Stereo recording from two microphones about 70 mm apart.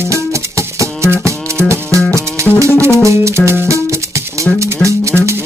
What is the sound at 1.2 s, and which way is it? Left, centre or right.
Music, right.